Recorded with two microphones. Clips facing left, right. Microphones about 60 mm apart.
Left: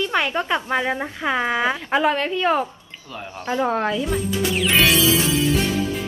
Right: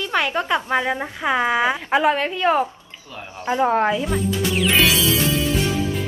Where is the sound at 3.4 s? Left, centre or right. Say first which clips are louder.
Right 3 dB; right.